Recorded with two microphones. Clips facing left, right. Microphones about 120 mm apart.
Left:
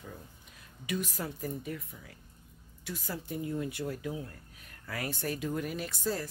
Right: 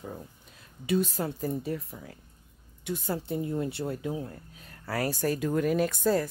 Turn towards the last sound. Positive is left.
turn(degrees=-55)  # may be behind; listen again after turning